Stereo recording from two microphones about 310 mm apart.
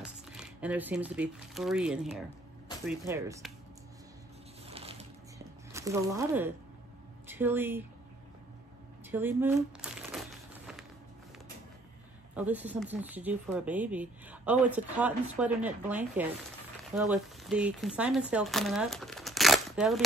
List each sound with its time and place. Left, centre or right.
0.0 s speech: centre
4.6 s a sound: centre
5.7 s speech: centre
9.1 s crumpling: centre
12.4 s speech: centre